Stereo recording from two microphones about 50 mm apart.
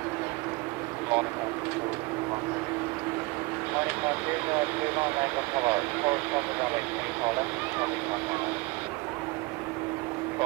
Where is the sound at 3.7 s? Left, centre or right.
Right.